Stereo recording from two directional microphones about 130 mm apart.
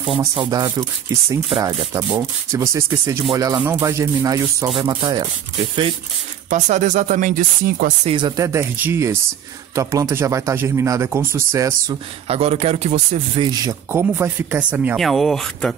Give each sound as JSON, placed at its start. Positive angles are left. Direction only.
{"t": 0.4, "sound": "speech", "side_deg": -30}
{"t": 6.5, "sound": "speech", "side_deg": -70}
{"t": 8.1, "sound": "speech", "side_deg": -35}
{"t": 12.3, "sound": "speech", "side_deg": -50}
{"t": 13.4, "sound": "speech", "side_deg": -30}
{"t": 13.9, "sound": "speech", "side_deg": -15}
{"t": 15.0, "sound": "speech", "side_deg": 0}